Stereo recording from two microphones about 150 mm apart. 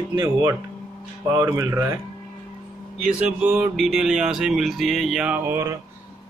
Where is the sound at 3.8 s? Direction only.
Centre (ahead or behind).